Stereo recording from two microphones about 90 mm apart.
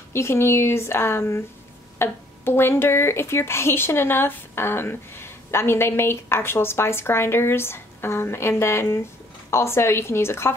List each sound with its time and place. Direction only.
0.1 s speech: 30° left (ahead or behind)